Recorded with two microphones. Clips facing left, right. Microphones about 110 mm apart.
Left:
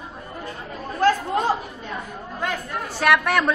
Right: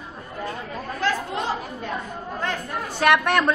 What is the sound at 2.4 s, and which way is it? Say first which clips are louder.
Speech: left 2 dB; centre (ahead or behind).